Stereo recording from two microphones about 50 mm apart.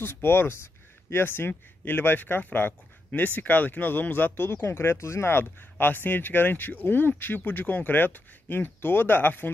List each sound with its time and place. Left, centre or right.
0.0 s speech: left
1.5 s speech: left
4.5 s speech: left